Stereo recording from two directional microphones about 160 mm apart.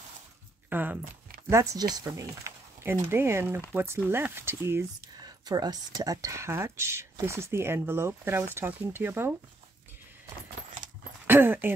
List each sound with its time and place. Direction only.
0.7 s speech: 10° right (ahead or behind)
5.2 s speech: 25° right (ahead or behind)
11.2 s a sound: 15° right (ahead or behind)